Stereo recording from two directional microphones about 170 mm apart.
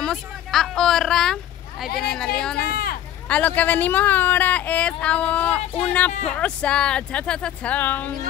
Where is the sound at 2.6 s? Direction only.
60° left (ahead or behind).